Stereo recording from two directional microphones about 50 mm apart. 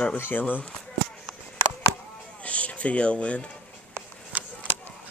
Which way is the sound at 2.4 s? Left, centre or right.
Left.